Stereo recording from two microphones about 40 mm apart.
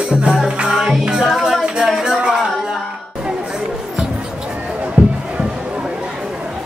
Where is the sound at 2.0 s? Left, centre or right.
Centre.